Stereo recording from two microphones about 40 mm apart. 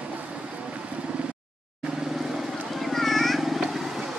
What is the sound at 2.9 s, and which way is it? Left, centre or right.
Vehicle, centre.